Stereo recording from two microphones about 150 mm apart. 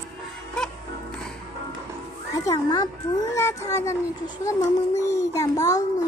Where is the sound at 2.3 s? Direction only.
20° left (ahead or behind).